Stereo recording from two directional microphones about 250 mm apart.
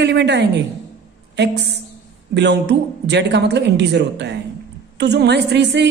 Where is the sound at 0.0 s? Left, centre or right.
Right.